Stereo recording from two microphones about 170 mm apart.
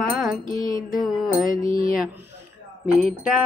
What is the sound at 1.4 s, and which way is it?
Speech, 55° left (ahead or behind).